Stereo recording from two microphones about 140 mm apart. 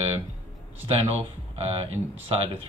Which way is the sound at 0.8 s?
40° right (ahead or behind).